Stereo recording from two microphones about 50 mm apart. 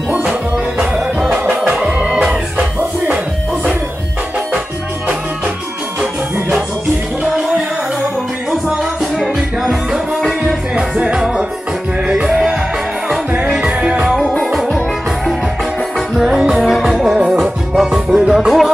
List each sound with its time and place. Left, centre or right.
0.1 s music: right
1.3 s music: right
1.6 s music: centre
11.0 s music: centre
16.2 s music: centre
16.6 s music: centre
18.4 s music: centre